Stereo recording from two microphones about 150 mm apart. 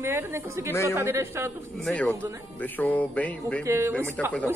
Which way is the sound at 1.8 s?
10° left (ahead or behind).